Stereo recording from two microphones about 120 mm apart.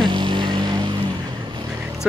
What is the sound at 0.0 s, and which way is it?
Vehicle, 40° right (ahead or behind).